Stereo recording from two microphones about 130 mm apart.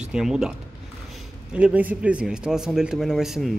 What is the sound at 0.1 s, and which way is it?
A man's voice, 5° right (ahead or behind).